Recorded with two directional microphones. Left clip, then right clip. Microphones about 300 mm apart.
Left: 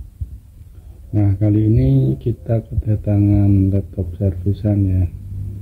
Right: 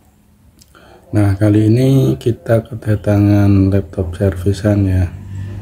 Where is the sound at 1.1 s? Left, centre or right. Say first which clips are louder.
Right 6 dB; centre.